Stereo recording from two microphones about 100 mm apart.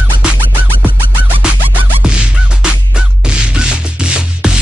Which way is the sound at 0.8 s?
15° right (ahead or behind).